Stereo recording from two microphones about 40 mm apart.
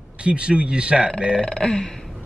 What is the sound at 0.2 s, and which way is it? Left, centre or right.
Speech, right.